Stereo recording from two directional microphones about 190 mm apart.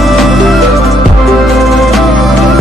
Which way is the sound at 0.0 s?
Centre (ahead or behind).